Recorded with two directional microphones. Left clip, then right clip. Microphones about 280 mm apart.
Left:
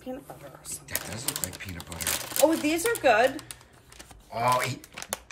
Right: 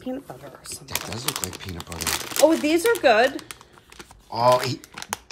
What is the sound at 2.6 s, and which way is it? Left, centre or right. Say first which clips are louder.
Speech: right 5 dB; right.